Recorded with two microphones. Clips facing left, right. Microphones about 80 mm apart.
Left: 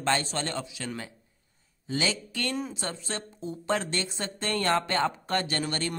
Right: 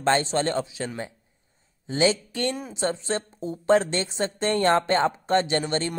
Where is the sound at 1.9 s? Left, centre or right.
Right.